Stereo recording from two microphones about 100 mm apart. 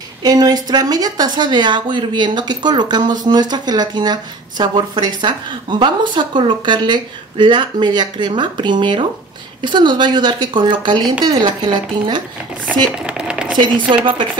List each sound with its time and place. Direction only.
0.2 s a woman's voice: 40° right (ahead or behind)
12.9 s a sound: 10° right (ahead or behind)
13.6 s a woman's voice: 55° right (ahead or behind)